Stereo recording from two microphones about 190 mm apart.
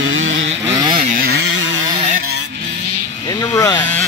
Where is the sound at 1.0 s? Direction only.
50° right (ahead or behind).